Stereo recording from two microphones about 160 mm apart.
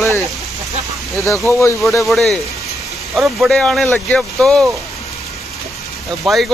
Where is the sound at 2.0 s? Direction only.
Centre (ahead or behind).